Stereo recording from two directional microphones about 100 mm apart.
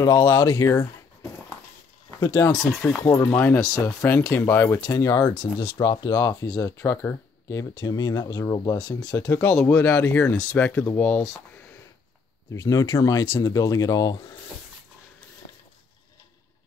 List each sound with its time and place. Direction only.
0.0 s speech: 35° left (ahead or behind)
2.0 s speech: 40° left (ahead or behind)
2.8 s speech: 15° left (ahead or behind)
4.8 s speech: 35° left (ahead or behind)
5.4 s speech: 50° left (ahead or behind); by 11.2 s 15° left (ahead or behind)
12.5 s speech: 35° left (ahead or behind)